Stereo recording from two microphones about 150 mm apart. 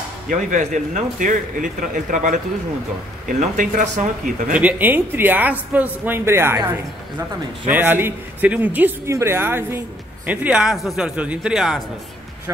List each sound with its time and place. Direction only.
0.3 s speech: 55° right (ahead or behind)
4.6 s a man's voice: 10° right (ahead or behind)
7.7 s a man's voice: 15° right (ahead or behind)